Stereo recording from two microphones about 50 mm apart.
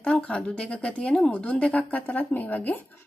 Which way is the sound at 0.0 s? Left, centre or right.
Left.